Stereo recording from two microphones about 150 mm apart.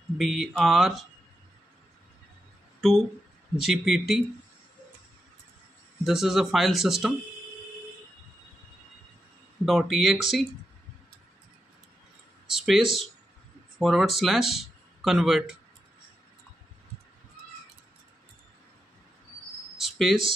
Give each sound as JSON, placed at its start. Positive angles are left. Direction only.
{"t": 0.2, "sound": "speech", "side_deg": 0}
{"t": 2.8, "sound": "speech", "side_deg": 0}
{"t": 6.0, "sound": "speech", "side_deg": 0}
{"t": 9.7, "sound": "speech", "side_deg": 0}
{"t": 12.4, "sound": "speech", "side_deg": 0}
{"t": 19.8, "sound": "a sound", "side_deg": 0}